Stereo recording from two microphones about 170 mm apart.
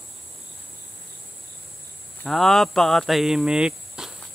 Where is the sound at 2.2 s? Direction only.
Centre (ahead or behind).